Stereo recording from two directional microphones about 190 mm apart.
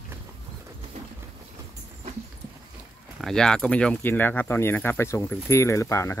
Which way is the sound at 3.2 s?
5° left (ahead or behind).